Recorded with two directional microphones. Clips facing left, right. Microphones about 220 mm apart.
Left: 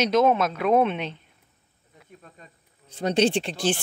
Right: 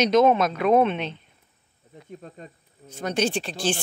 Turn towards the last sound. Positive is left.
turn(degrees=25)  # may be behind; listen again after turning